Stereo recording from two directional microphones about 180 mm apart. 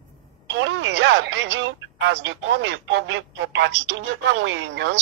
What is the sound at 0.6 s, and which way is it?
Speech, 85° right.